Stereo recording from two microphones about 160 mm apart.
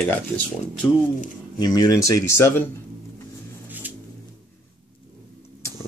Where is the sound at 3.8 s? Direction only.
10° right (ahead or behind).